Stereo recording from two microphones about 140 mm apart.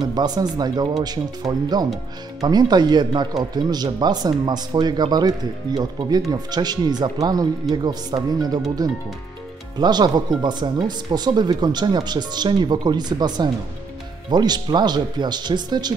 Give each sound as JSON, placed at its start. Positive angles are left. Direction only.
{"t": 0.0, "sound": "speech", "side_deg": -30}
{"t": 9.8, "sound": "speech", "side_deg": -30}